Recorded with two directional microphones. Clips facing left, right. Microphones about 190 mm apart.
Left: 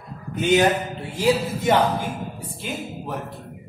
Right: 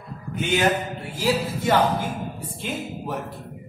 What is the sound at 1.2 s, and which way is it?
Speech, 20° left (ahead or behind).